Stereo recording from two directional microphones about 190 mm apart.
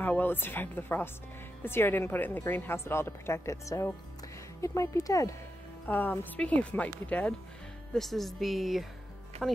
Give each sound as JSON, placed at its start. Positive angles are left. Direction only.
{"t": 0.0, "sound": "a woman's voice", "side_deg": 10}